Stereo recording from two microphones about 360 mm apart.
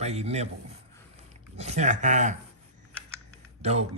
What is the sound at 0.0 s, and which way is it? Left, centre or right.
Speech, centre.